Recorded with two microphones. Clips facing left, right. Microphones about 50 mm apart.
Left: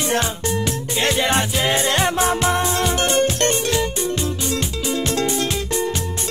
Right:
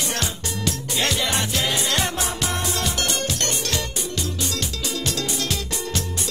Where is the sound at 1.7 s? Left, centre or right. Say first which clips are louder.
Left 5 dB; left.